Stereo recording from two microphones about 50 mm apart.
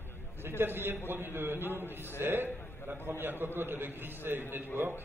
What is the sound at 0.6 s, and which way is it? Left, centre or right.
A man's voice, right.